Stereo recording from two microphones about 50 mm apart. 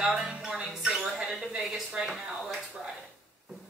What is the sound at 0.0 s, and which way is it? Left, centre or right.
Music, centre.